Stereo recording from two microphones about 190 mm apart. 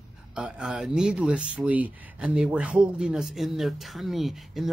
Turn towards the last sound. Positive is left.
turn(degrees=0)  # may be behind; listen again after turning